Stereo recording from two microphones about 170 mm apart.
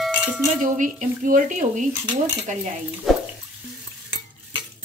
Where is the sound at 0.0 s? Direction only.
5° right (ahead or behind).